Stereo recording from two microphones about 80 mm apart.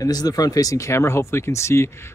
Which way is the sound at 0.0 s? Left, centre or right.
Left.